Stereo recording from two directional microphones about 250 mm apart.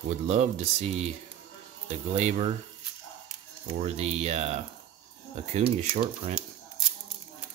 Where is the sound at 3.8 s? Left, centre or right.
Right.